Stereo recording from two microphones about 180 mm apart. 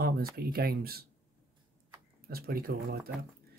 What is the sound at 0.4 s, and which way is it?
Speech, 60° right (ahead or behind).